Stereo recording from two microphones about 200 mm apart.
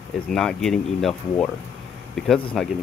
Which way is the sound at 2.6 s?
Centre (ahead or behind).